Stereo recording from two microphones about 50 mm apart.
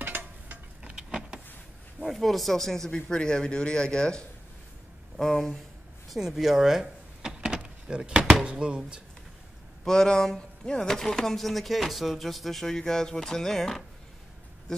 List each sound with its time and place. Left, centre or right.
0.0 s a sound: right
0.8 s vehicle: centre
2.0 s speech: centre
6.0 s power windows: centre
8.5 s speech: centre
9.8 s speech: centre
14.7 s a sound: centre